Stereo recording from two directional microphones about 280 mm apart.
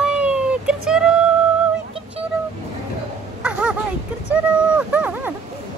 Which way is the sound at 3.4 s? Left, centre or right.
Centre.